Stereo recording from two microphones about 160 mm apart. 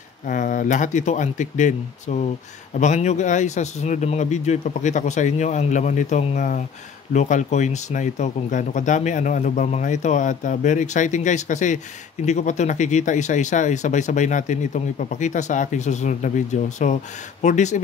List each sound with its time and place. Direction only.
0.3 s speech: 55° left (ahead or behind)